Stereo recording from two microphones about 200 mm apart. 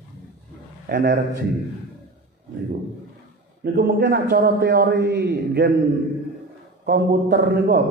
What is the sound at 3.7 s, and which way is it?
A man's voice, 50° right (ahead or behind).